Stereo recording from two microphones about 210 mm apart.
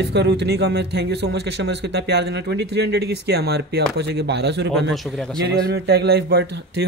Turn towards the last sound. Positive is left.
turn(degrees=-50)  # may be behind; listen again after turning